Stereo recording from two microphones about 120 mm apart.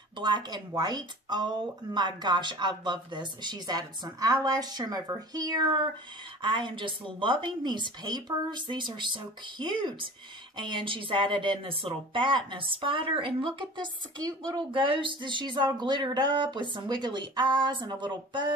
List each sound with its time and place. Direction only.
0.2 s speech: 40° right (ahead or behind)
14.7 s speech: 45° right (ahead or behind)